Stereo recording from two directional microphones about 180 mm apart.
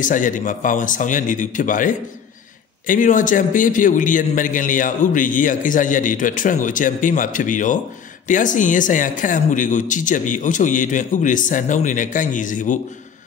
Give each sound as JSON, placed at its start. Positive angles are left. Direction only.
{"t": 0.0, "sound": "a man's voice", "side_deg": 45}